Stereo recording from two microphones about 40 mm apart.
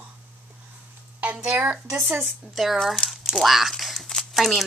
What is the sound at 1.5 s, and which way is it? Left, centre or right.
Speech, right.